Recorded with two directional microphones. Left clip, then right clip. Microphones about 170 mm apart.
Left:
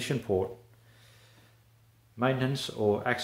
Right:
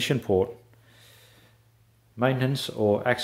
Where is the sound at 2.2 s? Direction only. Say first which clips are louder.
Right 4 dB; 60° right (ahead or behind).